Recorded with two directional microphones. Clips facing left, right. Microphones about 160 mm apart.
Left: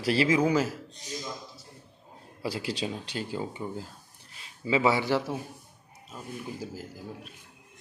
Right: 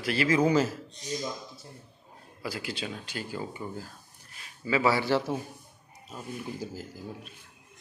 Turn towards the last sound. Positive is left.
turn(degrees=0)  # may be behind; listen again after turning